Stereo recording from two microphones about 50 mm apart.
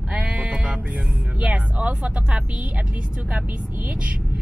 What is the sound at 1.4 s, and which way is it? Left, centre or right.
Speech, right.